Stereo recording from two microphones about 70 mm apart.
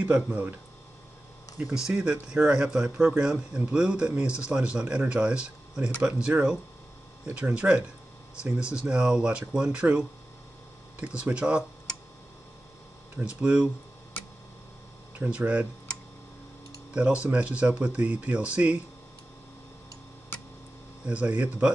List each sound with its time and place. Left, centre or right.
0.0 s speech: right
1.6 s speech: centre
13.2 s speech: centre
15.1 s speech: centre
16.9 s speech: centre
21.0 s speech: centre